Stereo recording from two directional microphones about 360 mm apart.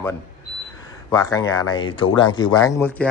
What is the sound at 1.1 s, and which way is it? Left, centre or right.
A man's voice, centre.